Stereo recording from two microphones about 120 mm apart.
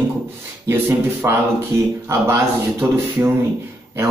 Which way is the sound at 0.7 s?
20° right (ahead or behind).